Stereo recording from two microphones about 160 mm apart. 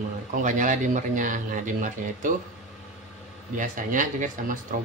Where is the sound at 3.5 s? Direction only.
55° right (ahead or behind).